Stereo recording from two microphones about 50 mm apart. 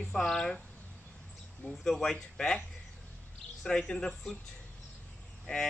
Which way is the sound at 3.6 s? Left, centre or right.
Centre.